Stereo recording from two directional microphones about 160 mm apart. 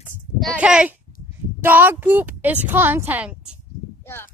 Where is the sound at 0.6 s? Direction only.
5° right (ahead or behind).